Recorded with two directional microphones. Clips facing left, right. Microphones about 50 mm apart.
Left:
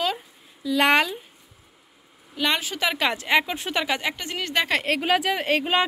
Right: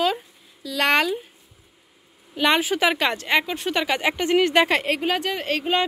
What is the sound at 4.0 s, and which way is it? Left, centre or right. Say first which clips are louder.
Speech: right 9 dB; centre.